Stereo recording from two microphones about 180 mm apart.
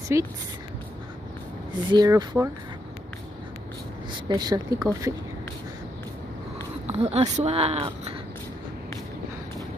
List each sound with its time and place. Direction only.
0.1 s speech: 15° right (ahead or behind)
1.9 s speech: 25° right (ahead or behind)
4.3 s speech: 20° right (ahead or behind)
6.9 s speech: 35° right (ahead or behind)